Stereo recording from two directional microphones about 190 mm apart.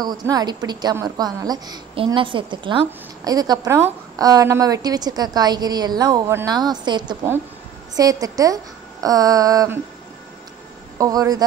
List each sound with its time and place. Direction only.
0.0 s a woman's voice: 20° right (ahead or behind)
11.0 s a woman's voice: 20° right (ahead or behind)